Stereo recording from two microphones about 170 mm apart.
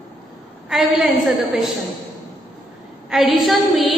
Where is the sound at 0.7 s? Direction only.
Centre (ahead or behind).